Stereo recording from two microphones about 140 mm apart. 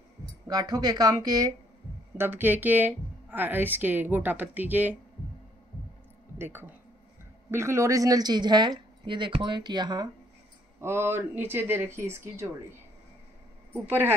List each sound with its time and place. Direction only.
0.5 s speech: 30° right (ahead or behind)
2.1 s speech: 15° right (ahead or behind)
6.3 s speech: 15° right (ahead or behind); by 10.0 s 30° right (ahead or behind)
10.8 s speech: 15° right (ahead or behind)
13.8 s speech: 15° right (ahead or behind)